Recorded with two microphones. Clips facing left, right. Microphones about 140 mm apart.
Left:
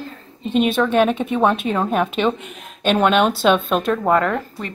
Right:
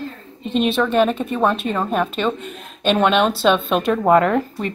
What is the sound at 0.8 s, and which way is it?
A woman's voice, 10° left (ahead or behind).